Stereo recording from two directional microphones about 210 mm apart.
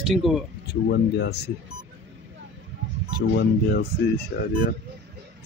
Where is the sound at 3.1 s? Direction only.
50° left (ahead or behind).